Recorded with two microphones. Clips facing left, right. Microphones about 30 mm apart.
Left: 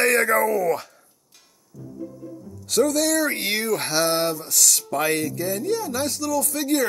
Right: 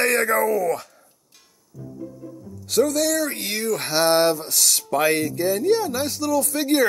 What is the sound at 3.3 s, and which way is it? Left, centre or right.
Speech, left.